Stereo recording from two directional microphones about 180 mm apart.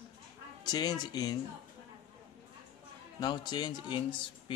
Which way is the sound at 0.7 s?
20° left (ahead or behind).